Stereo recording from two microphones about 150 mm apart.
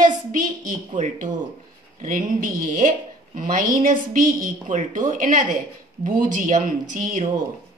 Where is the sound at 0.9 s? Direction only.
55° right (ahead or behind).